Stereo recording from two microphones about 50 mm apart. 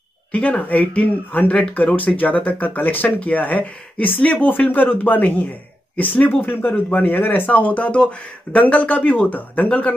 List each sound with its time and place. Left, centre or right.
0.3 s speech: left